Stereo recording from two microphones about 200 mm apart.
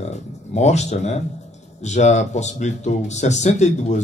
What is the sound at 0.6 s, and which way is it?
A man's voice, 35° left (ahead or behind).